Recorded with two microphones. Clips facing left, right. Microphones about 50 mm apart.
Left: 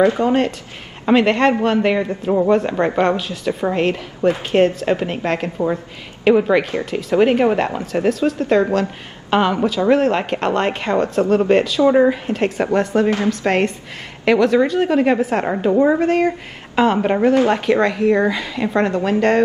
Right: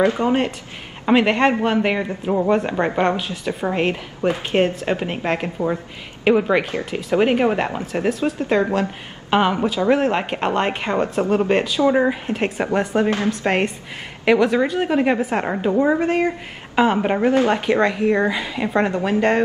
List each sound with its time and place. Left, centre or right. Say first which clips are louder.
0.2 s a woman's voice: left 3 dB; centre
12.3 s a woman's voice: left 3 dB; centre